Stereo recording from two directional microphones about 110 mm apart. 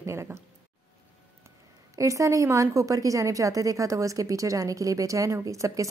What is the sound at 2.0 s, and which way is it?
A woman's voice, 30° right (ahead or behind).